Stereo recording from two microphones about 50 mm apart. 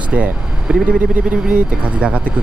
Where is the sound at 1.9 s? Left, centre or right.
Right.